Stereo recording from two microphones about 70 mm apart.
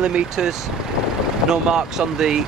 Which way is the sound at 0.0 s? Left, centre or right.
Centre.